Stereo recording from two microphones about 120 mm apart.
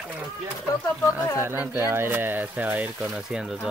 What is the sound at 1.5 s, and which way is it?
Speech, 20° right (ahead or behind).